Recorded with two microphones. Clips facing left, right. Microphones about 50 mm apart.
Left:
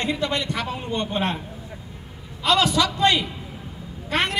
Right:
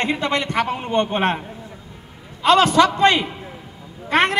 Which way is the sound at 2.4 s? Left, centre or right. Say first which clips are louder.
Right 6 dB; right.